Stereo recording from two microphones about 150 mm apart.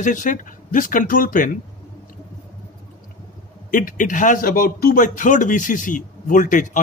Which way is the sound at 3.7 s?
65° left (ahead or behind).